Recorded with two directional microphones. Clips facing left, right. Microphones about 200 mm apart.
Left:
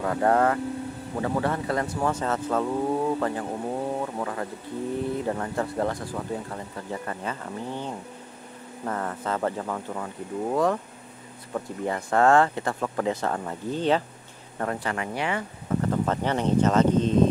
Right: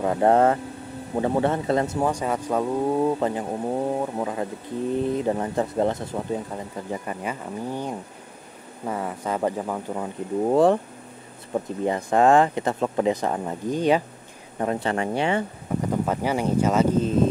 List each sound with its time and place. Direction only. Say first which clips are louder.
0.0 s speech: right 4 dB; 20° right (ahead or behind)
10.4 s speech: right 6 dB; 30° right (ahead or behind)
15.8 s speech: right 2 dB; 10° right (ahead or behind)